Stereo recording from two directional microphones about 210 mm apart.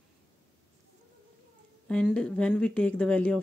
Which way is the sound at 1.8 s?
5° left (ahead or behind).